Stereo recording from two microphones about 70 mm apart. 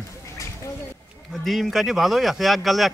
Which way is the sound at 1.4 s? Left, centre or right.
Centre.